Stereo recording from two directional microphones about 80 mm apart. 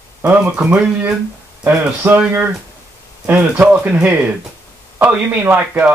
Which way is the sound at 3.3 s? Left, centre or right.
Centre.